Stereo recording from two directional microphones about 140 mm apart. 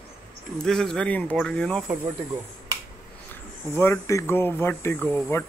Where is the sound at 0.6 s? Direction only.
5° left (ahead or behind).